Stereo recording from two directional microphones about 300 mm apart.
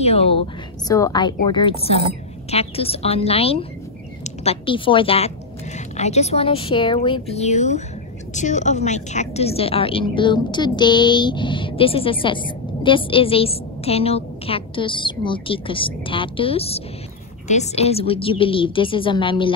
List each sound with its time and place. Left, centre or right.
0.0 s a woman's voice: centre